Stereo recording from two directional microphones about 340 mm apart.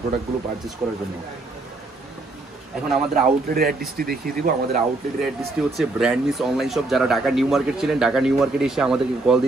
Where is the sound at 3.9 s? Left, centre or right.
Right.